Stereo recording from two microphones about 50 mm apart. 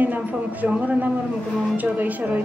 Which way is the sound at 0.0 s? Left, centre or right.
Right.